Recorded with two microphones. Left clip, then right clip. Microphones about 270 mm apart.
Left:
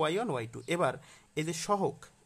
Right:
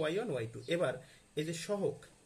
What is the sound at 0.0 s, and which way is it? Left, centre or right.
Speech, left.